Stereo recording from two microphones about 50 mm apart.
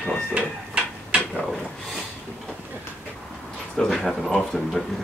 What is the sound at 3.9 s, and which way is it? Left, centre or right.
Speech, centre.